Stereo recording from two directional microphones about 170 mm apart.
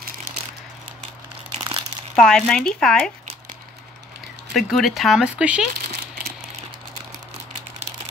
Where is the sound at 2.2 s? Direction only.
5° left (ahead or behind).